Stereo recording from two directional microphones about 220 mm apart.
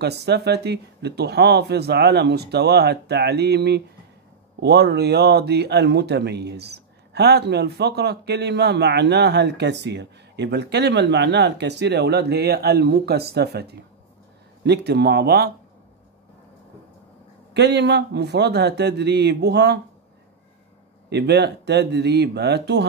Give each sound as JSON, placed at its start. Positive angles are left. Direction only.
{"t": 0.0, "sound": "speech", "side_deg": -50}
{"t": 17.6, "sound": "speech", "side_deg": -50}
{"t": 21.1, "sound": "speech", "side_deg": -50}